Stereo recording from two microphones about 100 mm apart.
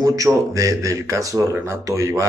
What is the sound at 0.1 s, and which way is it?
A man's voice, 35° right (ahead or behind).